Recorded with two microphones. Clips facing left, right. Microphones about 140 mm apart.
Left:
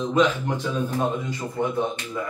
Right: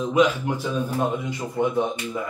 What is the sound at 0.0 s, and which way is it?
A man's voice, 10° right (ahead or behind).